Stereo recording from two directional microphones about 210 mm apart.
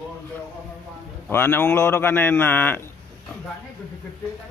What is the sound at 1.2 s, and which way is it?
Speech, 10° left (ahead or behind).